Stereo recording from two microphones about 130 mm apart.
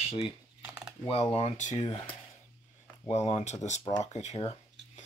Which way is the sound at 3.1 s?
55° left (ahead or behind).